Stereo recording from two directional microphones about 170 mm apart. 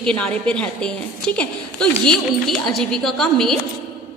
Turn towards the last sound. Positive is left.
turn(degrees=5)  # may be behind; listen again after turning